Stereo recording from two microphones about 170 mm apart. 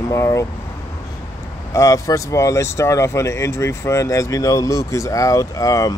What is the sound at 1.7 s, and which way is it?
Speech, 20° left (ahead or behind).